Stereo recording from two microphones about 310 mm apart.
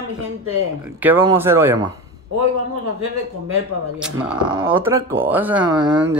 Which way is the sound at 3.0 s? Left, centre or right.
Right.